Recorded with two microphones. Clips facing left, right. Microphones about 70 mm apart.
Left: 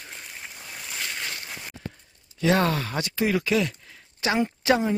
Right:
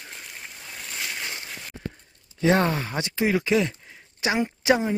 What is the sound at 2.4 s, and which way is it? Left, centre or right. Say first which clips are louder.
Speech: right 1 dB; right.